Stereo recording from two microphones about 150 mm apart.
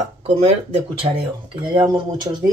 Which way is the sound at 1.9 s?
25° right (ahead or behind).